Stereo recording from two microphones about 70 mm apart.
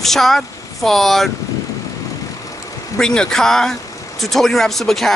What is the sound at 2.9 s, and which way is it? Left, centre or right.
Speech, centre.